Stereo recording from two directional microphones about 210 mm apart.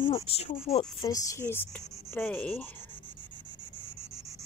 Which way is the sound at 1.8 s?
15° right (ahead or behind).